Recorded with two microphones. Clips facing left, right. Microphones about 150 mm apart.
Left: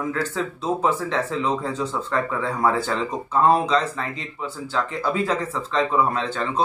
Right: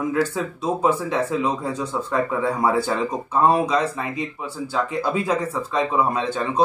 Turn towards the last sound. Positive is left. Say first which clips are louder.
# right 2 dB
turn(degrees=-15)  # may be behind; listen again after turning